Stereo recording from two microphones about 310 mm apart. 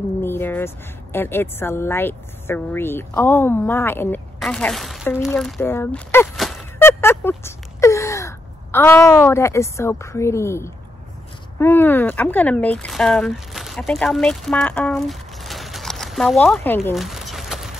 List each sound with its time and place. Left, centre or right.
0.2 s a woman's voice: centre